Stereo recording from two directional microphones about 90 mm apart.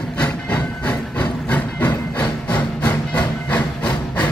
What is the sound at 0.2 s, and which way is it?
Steam, 15° left (ahead or behind).